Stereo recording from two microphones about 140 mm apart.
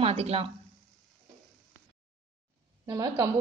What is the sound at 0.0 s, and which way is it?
Speech, 50° right (ahead or behind).